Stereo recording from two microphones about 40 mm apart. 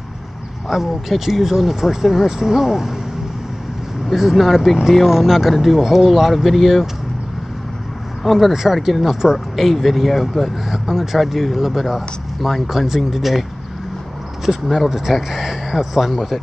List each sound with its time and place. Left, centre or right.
0.7 s speech: centre
4.1 s speech: centre
8.3 s speech: centre